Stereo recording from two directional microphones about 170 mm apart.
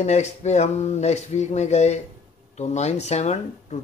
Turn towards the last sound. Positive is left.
turn(degrees=40)  # may be behind; listen again after turning